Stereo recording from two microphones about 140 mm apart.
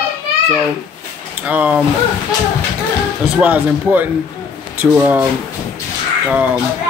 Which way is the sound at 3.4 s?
10° right (ahead or behind).